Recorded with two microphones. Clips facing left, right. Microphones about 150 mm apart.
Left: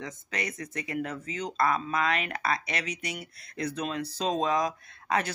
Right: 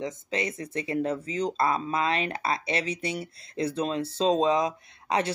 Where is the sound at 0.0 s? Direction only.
25° right (ahead or behind).